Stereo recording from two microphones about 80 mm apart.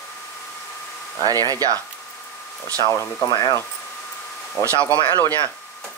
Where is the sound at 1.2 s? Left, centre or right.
Right.